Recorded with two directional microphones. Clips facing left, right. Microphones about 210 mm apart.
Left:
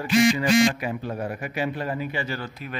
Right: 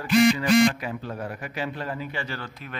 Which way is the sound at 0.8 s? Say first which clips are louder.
Left 3 dB; 15° left (ahead or behind).